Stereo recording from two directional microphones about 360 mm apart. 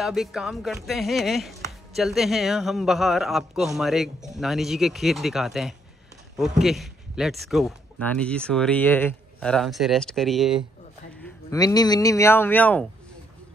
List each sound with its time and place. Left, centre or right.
0.0 s speech: centre
11.2 s speech: centre